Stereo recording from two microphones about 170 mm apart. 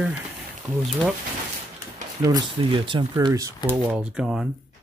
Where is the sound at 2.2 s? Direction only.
25° right (ahead or behind); by 4.5 s 5° right (ahead or behind).